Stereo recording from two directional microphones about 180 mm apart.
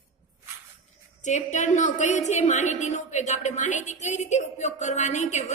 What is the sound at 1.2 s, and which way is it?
A woman's voice, 40° left (ahead or behind).